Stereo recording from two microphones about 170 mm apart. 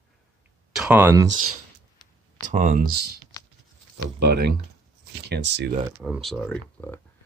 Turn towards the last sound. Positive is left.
turn(degrees=10)  # may be behind; listen again after turning